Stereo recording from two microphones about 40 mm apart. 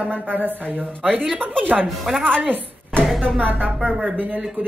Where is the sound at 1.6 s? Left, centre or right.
Right.